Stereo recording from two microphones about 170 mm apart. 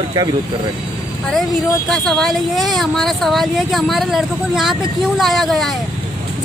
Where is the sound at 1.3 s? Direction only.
Centre (ahead or behind).